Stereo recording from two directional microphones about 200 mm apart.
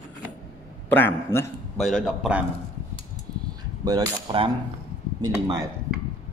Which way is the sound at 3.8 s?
20° right (ahead or behind).